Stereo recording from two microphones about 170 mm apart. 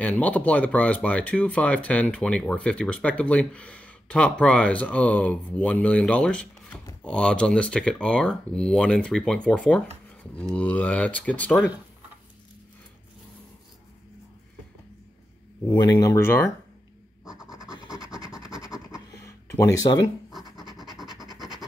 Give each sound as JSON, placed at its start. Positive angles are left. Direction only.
{"t": 0.0, "sound": "speech", "side_deg": 10}
{"t": 15.8, "sound": "speech", "side_deg": 20}
{"t": 17.2, "sound": "scratch", "side_deg": -5}
{"t": 18.9, "sound": "a sound", "side_deg": 15}
{"t": 21.1, "sound": "vehicle", "side_deg": -25}
{"t": 21.4, "sound": "vehicle", "side_deg": 0}